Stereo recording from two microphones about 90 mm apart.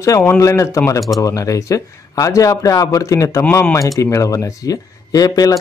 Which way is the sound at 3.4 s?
25° left (ahead or behind).